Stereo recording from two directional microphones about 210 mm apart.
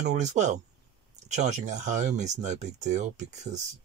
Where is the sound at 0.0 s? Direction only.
35° right (ahead or behind).